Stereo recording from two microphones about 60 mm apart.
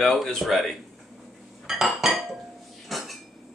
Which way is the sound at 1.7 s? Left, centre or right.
Centre.